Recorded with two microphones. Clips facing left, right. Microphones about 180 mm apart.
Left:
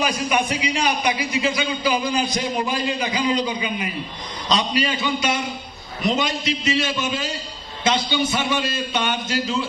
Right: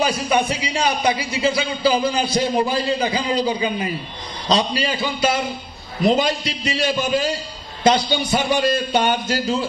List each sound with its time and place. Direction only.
0.0 s a man's voice: 30° right (ahead or behind)